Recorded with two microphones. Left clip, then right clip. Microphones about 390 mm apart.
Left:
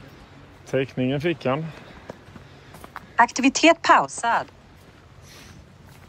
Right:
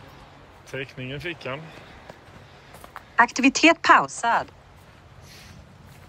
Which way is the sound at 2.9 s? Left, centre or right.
Centre.